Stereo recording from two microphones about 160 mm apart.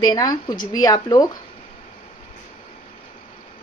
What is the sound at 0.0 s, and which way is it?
A woman's voice, 25° left (ahead or behind).